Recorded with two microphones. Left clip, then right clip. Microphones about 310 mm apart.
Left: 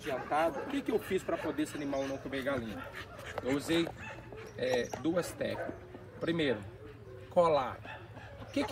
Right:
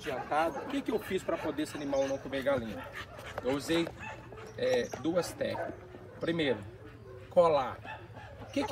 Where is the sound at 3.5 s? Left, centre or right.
Centre.